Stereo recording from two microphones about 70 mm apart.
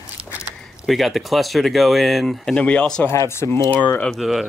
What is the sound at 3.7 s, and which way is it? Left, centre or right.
Speech, left.